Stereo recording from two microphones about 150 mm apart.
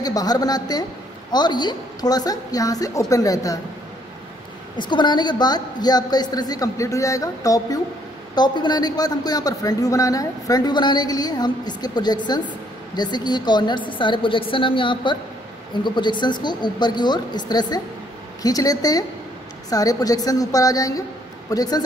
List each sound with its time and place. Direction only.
0.0 s a man's voice: 25° left (ahead or behind)
4.7 s a man's voice: 30° left (ahead or behind)